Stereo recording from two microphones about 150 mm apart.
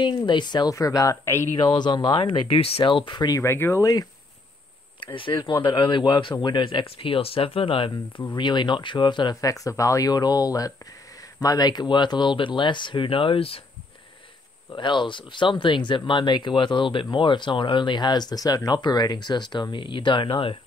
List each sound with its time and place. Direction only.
0.0 s speech: 30° left (ahead or behind)
1.6 s speech: 30° left (ahead or behind)
5.0 s speech: 35° left (ahead or behind)
14.7 s speech: 30° left (ahead or behind)